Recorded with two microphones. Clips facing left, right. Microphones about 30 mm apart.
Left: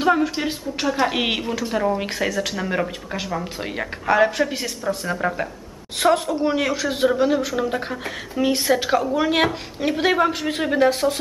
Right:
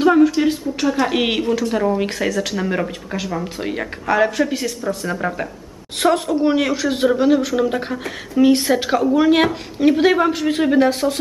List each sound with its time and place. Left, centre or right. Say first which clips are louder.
0.0 s speech: right 6 dB; centre